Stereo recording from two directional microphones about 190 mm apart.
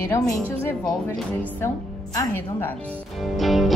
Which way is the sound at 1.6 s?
15° left (ahead or behind).